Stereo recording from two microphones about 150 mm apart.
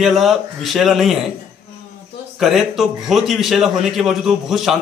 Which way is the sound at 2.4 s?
Centre (ahead or behind).